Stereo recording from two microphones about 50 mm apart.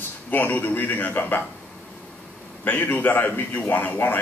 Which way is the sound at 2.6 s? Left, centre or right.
Left.